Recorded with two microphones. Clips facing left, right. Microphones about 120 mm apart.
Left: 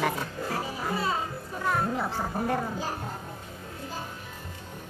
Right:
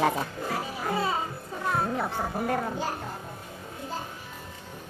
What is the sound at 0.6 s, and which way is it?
Music, 15° right (ahead or behind).